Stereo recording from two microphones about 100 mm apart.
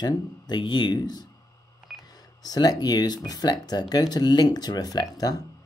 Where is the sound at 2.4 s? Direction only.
40° left (ahead or behind).